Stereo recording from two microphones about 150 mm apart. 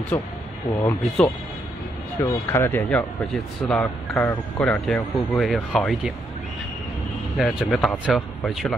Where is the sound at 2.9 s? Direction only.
5° left (ahead or behind).